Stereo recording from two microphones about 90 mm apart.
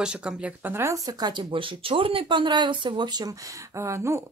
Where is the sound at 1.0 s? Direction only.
45° right (ahead or behind).